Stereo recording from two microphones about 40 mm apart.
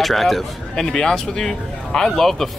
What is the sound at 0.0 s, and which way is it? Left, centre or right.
Speech, centre.